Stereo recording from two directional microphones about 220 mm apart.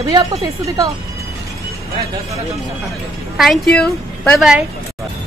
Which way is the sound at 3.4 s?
Centre (ahead or behind).